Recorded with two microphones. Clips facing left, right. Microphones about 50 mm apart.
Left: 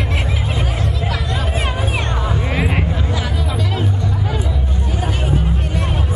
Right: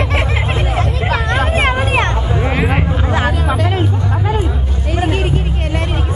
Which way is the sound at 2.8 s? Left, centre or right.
Right.